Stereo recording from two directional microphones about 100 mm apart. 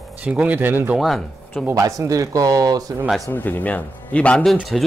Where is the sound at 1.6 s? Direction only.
35° right (ahead or behind).